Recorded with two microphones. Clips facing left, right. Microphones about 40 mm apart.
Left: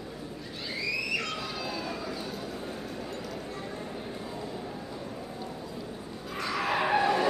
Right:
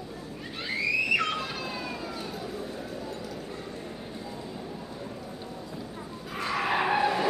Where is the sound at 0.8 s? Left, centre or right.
Right.